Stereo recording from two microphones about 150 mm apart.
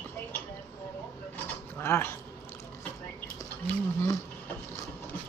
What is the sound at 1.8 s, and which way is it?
Speech, 15° left (ahead or behind).